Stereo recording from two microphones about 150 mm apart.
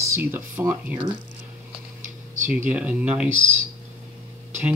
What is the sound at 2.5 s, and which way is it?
Speech, 10° right (ahead or behind).